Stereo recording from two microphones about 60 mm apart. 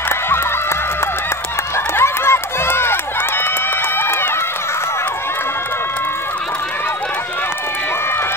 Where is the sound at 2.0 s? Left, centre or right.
Left.